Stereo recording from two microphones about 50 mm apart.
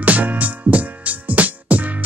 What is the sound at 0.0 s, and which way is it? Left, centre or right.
Music, right.